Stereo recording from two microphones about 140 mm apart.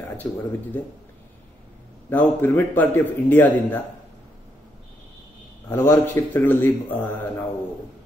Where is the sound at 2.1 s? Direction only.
15° left (ahead or behind).